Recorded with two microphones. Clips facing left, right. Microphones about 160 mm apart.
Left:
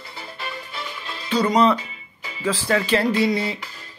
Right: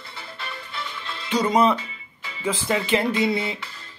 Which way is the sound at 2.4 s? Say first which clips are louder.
Left 3 dB; 20° right (ahead or behind).